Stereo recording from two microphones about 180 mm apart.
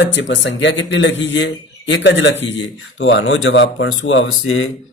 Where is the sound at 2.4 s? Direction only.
90° left.